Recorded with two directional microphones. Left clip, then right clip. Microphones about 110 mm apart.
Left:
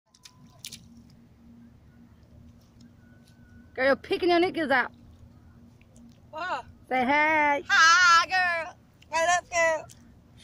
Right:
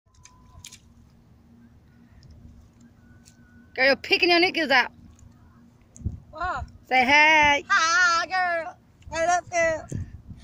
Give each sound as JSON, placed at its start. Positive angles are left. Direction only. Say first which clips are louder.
{"t": 0.2, "sound": "biting", "louder": "left 2 dB", "side_deg": 0}
{"t": 3.7, "sound": "speech", "louder": "right 4 dB", "side_deg": -10}
{"t": 6.9, "sound": "speech", "louder": "right 6 dB", "side_deg": -10}
{"t": 7.6, "sound": "a sound", "louder": "left 2 dB", "side_deg": 25}